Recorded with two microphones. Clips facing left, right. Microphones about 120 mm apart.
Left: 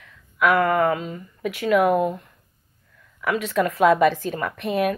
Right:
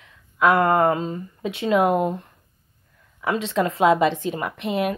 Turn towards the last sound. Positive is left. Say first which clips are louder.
# left 1 dB
turn(degrees=-20)  # may be behind; listen again after turning